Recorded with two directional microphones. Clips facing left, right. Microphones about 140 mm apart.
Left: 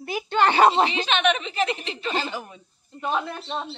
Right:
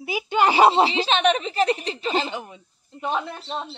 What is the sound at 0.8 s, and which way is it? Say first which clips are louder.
A woman's voice: right 2 dB; 30° right (ahead or behind).